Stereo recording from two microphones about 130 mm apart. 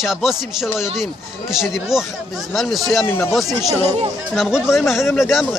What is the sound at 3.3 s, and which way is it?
Speech, centre (ahead or behind).